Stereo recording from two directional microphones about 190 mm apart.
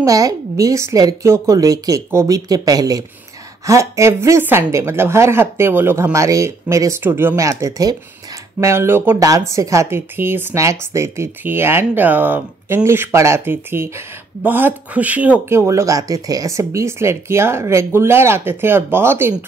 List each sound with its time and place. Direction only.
0.0 s speech: 15° right (ahead or behind)